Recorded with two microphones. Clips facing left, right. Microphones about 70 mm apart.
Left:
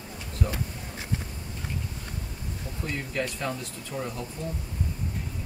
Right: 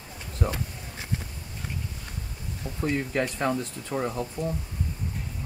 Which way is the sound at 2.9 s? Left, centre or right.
Right.